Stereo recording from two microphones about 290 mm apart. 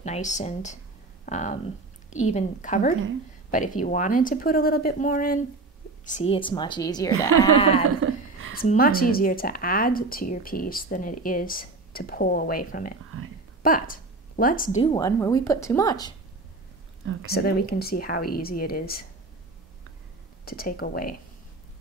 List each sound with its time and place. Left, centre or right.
0.0 s a woman's voice: left
7.2 s speech: right
7.5 s speech: centre
8.0 s a sound: right
8.5 s speech: left
13.1 s a sound: right
13.6 s a woman's voice: left; by 16.2 s centre
17.0 s speech: right
17.3 s speech: left
20.4 s speech: left